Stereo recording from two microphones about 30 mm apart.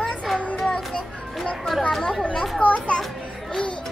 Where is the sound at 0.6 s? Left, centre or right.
Left.